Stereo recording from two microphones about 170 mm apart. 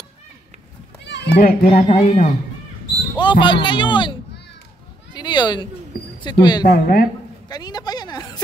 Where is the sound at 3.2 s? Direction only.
30° left (ahead or behind).